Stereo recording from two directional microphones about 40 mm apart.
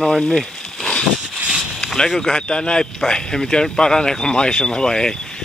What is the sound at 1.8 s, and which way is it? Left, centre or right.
Speech, centre.